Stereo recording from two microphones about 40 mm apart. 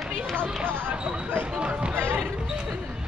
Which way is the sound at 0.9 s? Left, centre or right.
Right.